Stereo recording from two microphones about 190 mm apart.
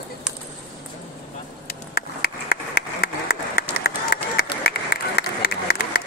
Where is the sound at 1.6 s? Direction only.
55° left (ahead or behind).